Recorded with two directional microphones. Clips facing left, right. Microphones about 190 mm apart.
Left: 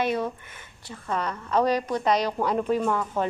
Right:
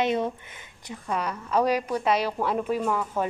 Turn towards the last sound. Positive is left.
turn(degrees=-5)  # may be behind; listen again after turning